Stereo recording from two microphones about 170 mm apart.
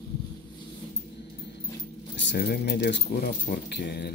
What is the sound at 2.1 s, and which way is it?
Speech, 80° left.